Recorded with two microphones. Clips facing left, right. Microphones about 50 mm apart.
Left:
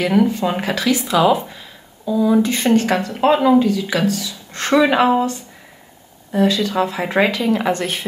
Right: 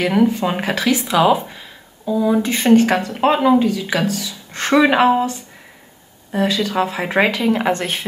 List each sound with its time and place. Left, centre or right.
0.0 s speech: centre
6.3 s speech: right